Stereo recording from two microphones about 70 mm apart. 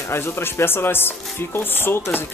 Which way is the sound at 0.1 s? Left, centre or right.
Left.